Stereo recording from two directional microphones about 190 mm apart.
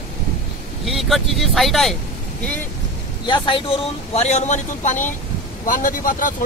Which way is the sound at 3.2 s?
25° left (ahead or behind).